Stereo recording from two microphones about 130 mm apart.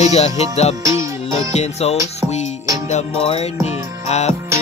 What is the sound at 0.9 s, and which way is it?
Music, 25° right (ahead or behind).